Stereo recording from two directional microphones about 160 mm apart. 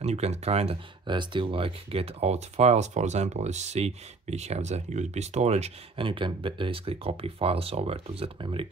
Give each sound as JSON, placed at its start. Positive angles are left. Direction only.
{"t": 0.0, "sound": "speech", "side_deg": -45}